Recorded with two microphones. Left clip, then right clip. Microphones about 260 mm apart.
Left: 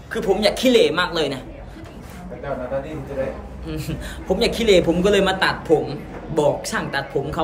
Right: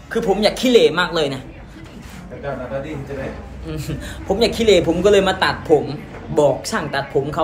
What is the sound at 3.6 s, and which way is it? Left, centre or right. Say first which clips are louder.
A man's voice: right 1 dB; centre.